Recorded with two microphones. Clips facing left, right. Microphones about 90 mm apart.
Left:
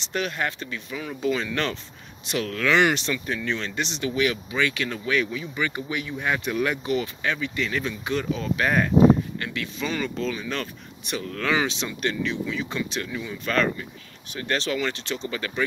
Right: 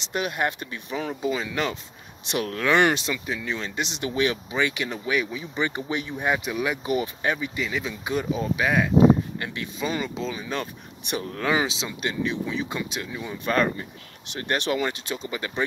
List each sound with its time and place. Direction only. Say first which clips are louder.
0.1 s speech: right 1 dB; 20° right (ahead or behind)
1.2 s speech: left 3 dB; 10° right (ahead or behind)
2.2 s speech: even; 25° right (ahead or behind)
8.6 s speech: left 1 dB; 5° right (ahead or behind)
9.4 s speech: even; 20° right (ahead or behind)